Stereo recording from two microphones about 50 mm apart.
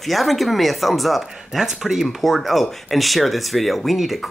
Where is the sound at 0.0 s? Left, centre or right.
Centre.